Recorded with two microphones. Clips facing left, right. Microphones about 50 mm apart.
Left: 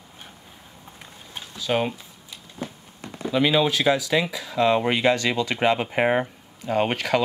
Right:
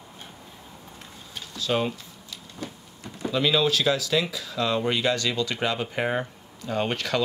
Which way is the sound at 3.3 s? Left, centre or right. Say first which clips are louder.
Left 2 dB; left.